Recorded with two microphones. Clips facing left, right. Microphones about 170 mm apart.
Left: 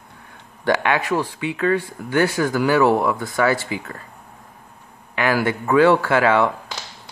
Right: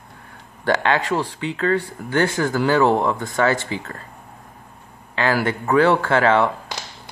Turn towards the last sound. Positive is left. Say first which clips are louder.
# even
turn(degrees=10)  # may be behind; listen again after turning